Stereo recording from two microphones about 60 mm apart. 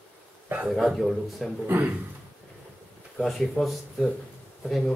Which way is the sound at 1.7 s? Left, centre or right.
Right.